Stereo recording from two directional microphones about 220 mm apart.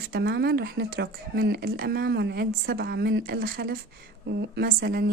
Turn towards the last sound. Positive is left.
turn(degrees=-45)  # may be behind; listen again after turning